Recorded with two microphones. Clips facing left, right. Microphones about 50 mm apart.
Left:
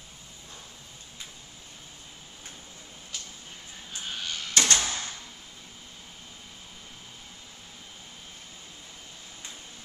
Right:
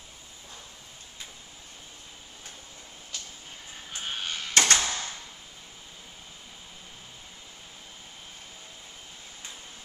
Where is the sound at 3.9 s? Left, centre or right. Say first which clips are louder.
Right 1 dB; right.